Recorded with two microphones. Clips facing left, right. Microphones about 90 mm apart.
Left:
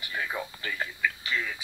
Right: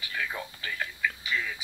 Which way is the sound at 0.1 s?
25° left (ahead or behind).